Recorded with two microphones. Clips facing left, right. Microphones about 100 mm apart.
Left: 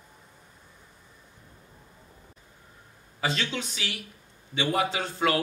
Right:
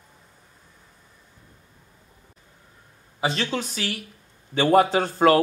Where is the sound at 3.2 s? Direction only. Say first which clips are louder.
Right 4 dB; 35° right (ahead or behind).